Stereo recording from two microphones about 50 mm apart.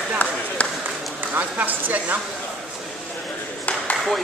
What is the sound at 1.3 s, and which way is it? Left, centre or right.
Speech, right.